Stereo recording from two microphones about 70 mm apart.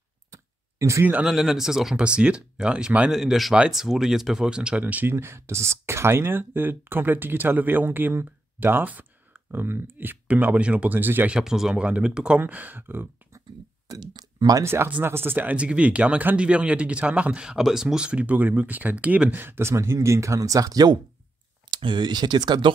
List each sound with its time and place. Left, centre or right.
0.3 s clicking: right
1.2 s speech: centre
3.1 s speech: centre; by 5.1 s right
5.1 s speech: right
11.2 s speech: centre
12.4 s speech: right
13.9 s speech: right
14.6 s speech: right; by 19.3 s centre
19.3 s speech: right
19.7 s speech: right
21.6 s speech: right